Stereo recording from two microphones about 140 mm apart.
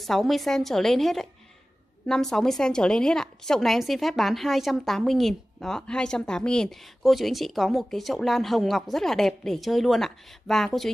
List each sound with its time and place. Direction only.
0.0 s a woman's voice: centre (ahead or behind)